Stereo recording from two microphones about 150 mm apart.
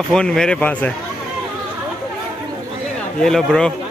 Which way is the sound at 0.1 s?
5° left (ahead or behind).